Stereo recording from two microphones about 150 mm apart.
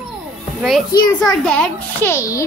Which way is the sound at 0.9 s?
25° left (ahead or behind).